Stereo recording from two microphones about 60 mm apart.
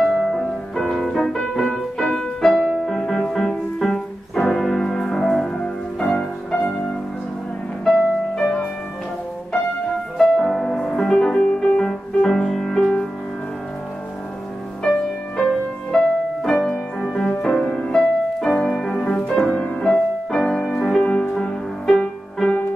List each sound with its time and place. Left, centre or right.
0.0 s music: centre
5.6 s music: centre
8.4 s music: centre
10.1 s music: centre
14.8 s music: centre
19.8 s music: centre
21.0 s music: centre
21.8 s music: centre